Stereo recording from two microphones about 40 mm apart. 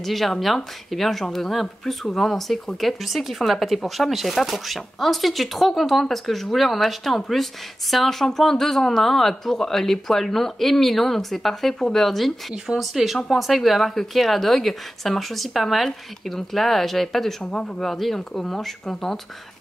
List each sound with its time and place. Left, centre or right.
0.0 s speech: centre
17.4 s speech: centre
17.8 s speech: centre